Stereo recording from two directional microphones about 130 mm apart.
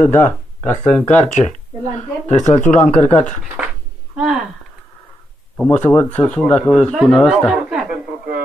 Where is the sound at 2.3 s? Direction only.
70° left (ahead or behind).